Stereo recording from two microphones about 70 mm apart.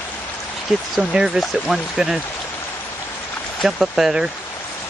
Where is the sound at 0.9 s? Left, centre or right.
Centre.